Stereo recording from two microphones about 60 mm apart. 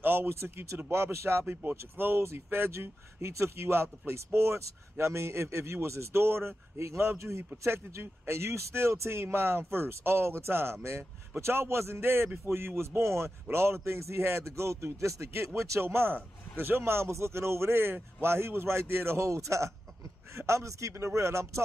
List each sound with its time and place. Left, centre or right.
0.0 s speech: right
19.2 s a man's voice: right